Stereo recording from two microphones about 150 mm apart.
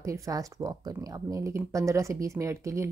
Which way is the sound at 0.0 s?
20° right (ahead or behind).